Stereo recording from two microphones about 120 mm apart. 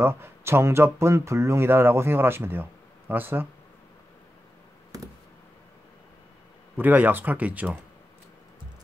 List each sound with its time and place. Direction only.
0.0 s speech: 20° right (ahead or behind)
6.8 s speech: 15° right (ahead or behind)